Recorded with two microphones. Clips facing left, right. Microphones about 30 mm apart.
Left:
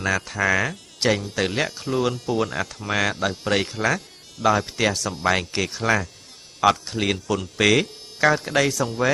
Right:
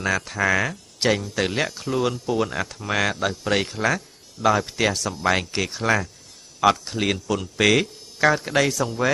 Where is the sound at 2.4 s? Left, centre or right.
Centre.